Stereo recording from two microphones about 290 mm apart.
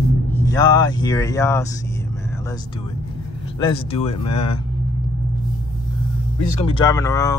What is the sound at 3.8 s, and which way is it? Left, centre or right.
Speech, left.